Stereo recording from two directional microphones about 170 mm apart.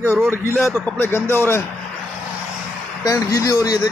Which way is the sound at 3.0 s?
20° left (ahead or behind).